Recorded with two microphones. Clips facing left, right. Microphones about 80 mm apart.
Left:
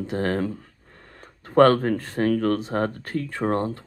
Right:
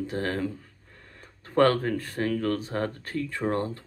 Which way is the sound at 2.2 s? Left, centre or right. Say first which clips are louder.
Left 6 dB; left.